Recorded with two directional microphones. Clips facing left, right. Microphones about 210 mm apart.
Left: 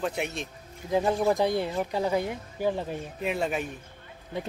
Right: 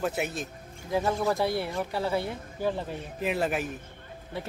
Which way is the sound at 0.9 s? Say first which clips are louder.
Left 3 dB; 20° left (ahead or behind).